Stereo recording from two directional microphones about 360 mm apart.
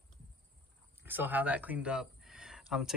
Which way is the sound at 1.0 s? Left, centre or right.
Centre.